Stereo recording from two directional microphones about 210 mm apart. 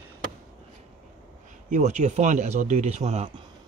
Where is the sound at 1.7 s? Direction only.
35° right (ahead or behind).